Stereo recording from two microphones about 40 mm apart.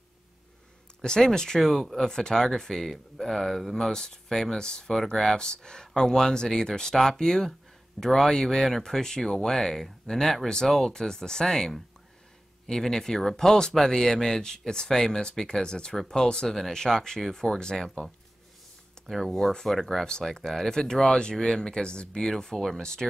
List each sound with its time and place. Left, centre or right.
1.0 s speech: centre
4.9 s speech: centre
19.0 s speech: centre
20.1 s speech: centre
22.3 s speech: centre